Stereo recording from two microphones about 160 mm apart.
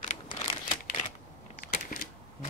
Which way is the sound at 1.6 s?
60° left (ahead or behind).